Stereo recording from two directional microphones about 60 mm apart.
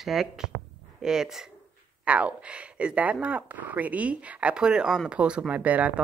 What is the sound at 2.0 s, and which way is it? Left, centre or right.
Speech, right.